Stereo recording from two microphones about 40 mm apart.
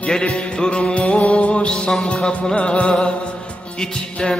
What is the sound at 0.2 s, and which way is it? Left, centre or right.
Music, left.